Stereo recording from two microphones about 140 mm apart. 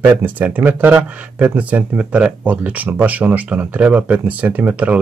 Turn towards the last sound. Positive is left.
turn(degrees=-10)  # may be behind; listen again after turning